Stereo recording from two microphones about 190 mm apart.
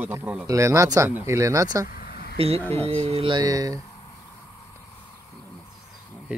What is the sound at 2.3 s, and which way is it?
Speech, 30° right (ahead or behind).